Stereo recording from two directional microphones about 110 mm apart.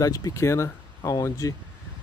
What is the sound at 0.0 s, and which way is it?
Speech, 30° left (ahead or behind).